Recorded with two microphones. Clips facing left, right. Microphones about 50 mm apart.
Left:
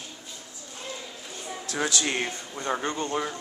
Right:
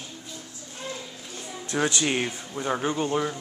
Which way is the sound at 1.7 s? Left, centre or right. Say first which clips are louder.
Right 3 dB; centre.